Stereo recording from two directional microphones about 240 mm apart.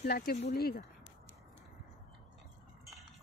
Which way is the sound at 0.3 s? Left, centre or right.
Left.